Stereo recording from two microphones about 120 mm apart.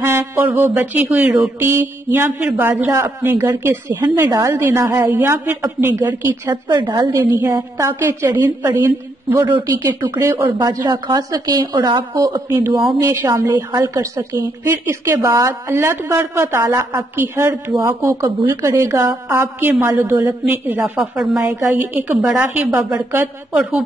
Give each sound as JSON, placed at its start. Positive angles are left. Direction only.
{"t": 0.0, "sound": "music", "side_deg": -20}
{"t": 1.7, "sound": "a woman's voice", "side_deg": -20}
{"t": 6.5, "sound": "a woman's voice", "side_deg": -40}
{"t": 7.0, "sound": "a woman's voice", "side_deg": -20}
{"t": 9.5, "sound": "a woman's voice", "side_deg": -30}
{"t": 10.6, "sound": "a woman's voice", "side_deg": -35}
{"t": 13.0, "sound": "a woman's voice", "side_deg": -25}
{"t": 21.5, "sound": "a woman's voice", "side_deg": -15}